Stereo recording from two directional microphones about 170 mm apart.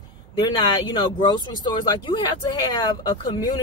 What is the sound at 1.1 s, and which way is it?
Speech, 25° left (ahead or behind).